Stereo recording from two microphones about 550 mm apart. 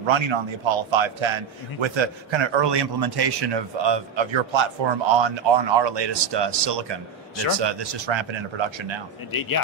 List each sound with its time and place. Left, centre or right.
0.0 s a man's voice: right
9.3 s speech: left